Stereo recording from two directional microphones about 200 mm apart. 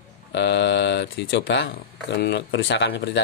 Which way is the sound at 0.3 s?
60° left (ahead or behind).